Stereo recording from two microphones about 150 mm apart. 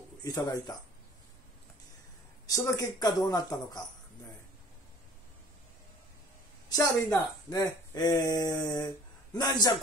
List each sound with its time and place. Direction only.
0.2 s speech: 25° left (ahead or behind)
2.4 s speech: 20° left (ahead or behind)
6.7 s speech: 25° left (ahead or behind)